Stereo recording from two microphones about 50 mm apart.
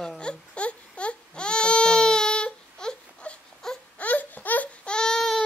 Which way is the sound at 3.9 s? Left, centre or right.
Left.